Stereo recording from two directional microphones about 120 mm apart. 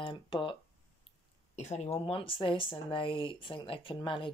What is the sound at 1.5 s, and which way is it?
Speech, 70° left (ahead or behind).